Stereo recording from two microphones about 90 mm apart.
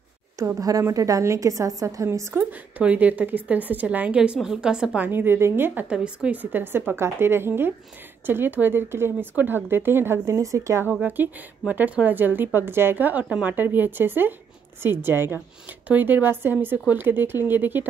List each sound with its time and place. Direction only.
0.6 s a woman's voice: 40° right (ahead or behind)
2.3 s a woman's voice: 15° right (ahead or behind)
5.0 s speech: 25° right (ahead or behind)
5.9 s speech: 10° right (ahead or behind); by 10.9 s 35° right (ahead or behind)
10.9 s speech: 15° right (ahead or behind)